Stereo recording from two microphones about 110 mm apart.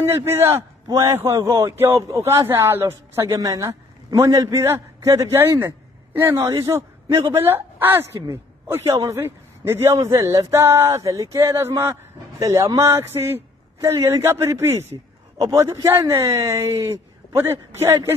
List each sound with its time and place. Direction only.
0.0 s a man's voice: 25° right (ahead or behind)